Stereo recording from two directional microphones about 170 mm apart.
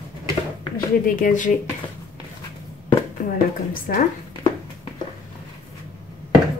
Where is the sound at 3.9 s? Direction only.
60° left (ahead or behind).